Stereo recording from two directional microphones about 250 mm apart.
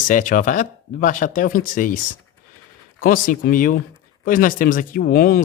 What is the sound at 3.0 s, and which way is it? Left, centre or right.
Speech, left.